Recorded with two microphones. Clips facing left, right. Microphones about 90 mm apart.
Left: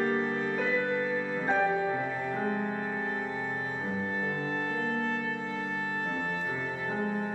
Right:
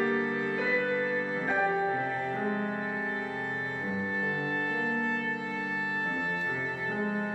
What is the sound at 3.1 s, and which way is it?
Music, 10° left (ahead or behind).